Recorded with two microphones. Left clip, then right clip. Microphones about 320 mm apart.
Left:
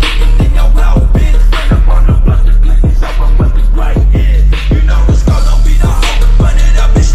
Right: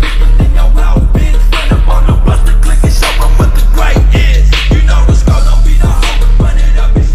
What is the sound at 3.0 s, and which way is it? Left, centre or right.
Music, right.